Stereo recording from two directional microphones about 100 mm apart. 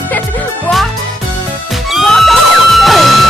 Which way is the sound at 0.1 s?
15° left (ahead or behind).